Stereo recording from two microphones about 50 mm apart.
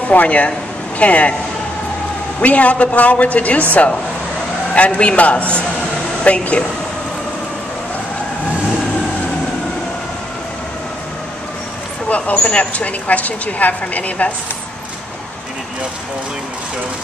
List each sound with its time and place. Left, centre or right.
0.1 s a woman's voice: left
2.4 s a woman's voice: left
4.7 s a woman's voice: left
12.1 s a woman's voice: left